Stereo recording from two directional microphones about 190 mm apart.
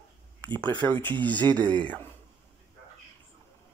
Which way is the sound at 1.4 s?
20° right (ahead or behind).